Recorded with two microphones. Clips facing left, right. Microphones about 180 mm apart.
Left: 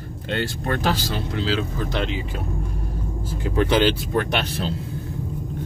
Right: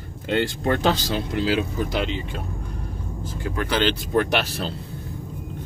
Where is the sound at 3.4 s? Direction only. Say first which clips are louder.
Left 6 dB; 25° left (ahead or behind).